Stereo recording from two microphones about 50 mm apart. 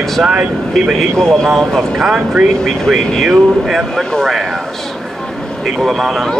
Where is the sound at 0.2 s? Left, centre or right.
Right.